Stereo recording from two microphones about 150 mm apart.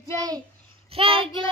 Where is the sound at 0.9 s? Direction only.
40° right (ahead or behind).